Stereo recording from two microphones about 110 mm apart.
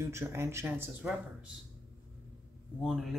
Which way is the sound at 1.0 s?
10° right (ahead or behind).